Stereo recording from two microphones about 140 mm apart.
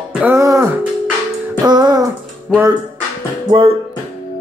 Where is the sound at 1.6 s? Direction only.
30° right (ahead or behind).